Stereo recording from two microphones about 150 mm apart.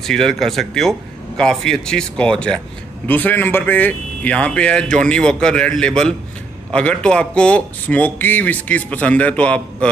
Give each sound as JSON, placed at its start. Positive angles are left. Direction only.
{"t": 0.0, "sound": "speech", "side_deg": 5}